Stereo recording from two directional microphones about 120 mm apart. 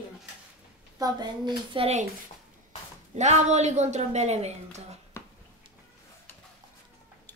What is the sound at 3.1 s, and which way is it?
A woman's voice, 75° right (ahead or behind).